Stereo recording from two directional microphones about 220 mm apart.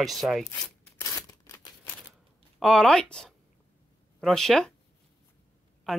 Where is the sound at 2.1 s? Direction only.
Centre (ahead or behind).